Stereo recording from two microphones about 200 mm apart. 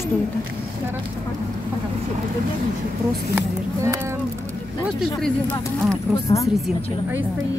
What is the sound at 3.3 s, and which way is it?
Speech, 15° right (ahead or behind).